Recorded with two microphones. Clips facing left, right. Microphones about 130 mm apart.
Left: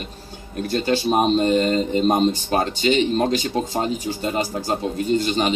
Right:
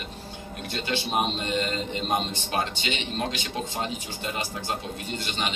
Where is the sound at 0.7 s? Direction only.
40° left (ahead or behind).